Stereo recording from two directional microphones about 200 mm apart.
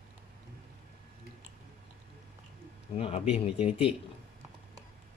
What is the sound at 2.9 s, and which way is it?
Speech, 30° left (ahead or behind).